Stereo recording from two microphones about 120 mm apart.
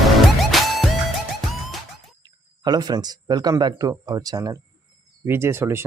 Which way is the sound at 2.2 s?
35° right (ahead or behind).